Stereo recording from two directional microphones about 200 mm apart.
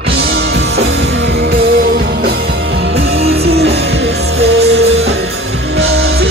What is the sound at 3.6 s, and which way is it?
Music, 60° right (ahead or behind).